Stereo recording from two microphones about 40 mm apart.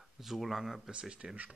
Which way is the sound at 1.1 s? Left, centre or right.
Right.